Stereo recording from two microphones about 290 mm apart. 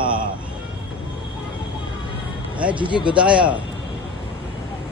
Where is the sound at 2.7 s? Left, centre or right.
Centre.